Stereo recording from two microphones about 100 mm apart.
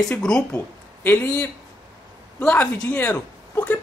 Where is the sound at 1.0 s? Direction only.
20° left (ahead or behind).